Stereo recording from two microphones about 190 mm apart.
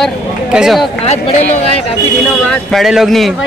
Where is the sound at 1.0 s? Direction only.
35° left (ahead or behind).